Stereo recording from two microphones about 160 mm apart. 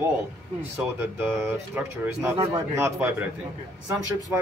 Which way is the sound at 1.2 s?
10° right (ahead or behind).